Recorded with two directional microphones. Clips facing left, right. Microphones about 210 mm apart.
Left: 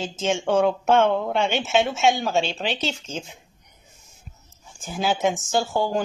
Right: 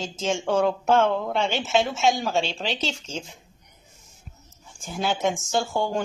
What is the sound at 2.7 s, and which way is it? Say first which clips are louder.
Speech: left 2 dB; 30° right (ahead or behind).